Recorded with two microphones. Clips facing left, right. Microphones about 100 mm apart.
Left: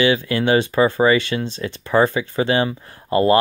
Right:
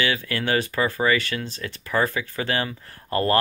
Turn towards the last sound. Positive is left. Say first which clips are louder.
# left 7 dB
turn(degrees=15)  # may be behind; listen again after turning